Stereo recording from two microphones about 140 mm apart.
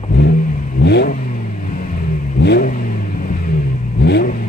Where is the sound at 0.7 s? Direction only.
90° left.